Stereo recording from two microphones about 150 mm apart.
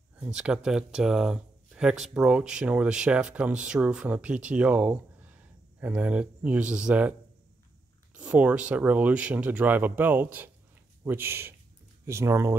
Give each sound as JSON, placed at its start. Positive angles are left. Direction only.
{"t": 0.2, "sound": "speech", "side_deg": -5}